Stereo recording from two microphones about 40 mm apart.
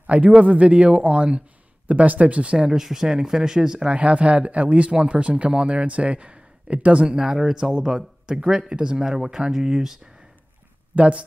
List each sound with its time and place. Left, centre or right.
0.0 s a man's voice: right
2.7 s speech: centre
3.9 s a man's voice: right; by 9.8 s centre
11.0 s a man's voice: right